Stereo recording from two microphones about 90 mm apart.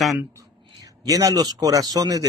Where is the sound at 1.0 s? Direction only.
40° right (ahead or behind).